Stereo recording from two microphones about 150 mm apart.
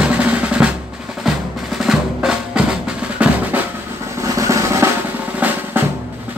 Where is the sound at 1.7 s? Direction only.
5° right (ahead or behind).